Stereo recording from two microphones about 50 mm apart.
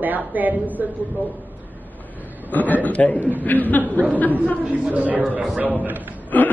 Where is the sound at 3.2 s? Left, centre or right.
Right.